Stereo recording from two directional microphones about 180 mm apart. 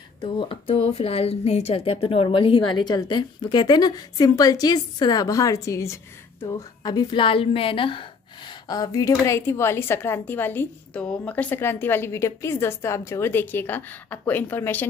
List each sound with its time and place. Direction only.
0.2 s a woman's voice: 30° left (ahead or behind); by 14.9 s 10° left (ahead or behind)